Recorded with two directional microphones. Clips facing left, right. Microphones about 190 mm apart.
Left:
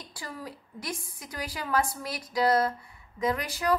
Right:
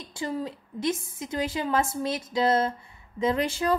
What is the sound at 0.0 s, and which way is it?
Speech, 25° right (ahead or behind).